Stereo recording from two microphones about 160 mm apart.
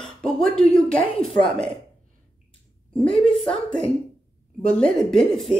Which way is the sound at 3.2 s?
5° left (ahead or behind).